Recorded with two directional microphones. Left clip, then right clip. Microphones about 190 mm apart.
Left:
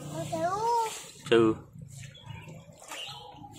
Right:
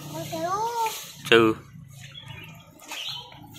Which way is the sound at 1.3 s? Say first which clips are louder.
Right 5 dB; 15° right (ahead or behind).